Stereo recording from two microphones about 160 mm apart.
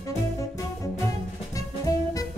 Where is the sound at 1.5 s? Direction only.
20° left (ahead or behind).